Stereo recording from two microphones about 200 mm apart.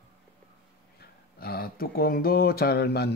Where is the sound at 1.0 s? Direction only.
50° left (ahead or behind).